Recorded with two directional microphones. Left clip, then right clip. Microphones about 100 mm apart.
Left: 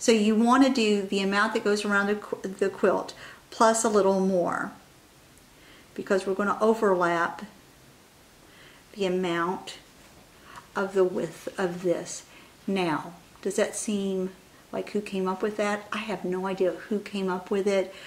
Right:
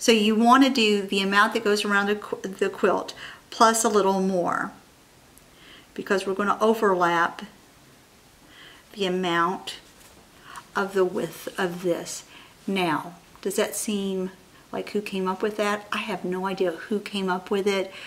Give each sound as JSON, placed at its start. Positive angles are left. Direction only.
{"t": 0.0, "sound": "a woman's voice", "side_deg": -25}
{"t": 5.9, "sound": "a woman's voice", "side_deg": -25}
{"t": 8.9, "sound": "a woman's voice", "side_deg": -30}